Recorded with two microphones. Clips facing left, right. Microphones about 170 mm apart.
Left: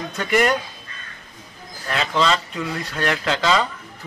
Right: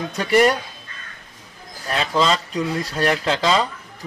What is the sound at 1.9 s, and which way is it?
A man's voice, 35° right (ahead or behind).